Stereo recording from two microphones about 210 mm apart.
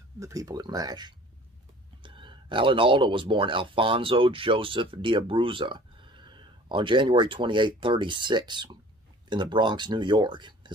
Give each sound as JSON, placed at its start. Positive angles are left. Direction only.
{"t": 0.2, "sound": "speech", "side_deg": -15}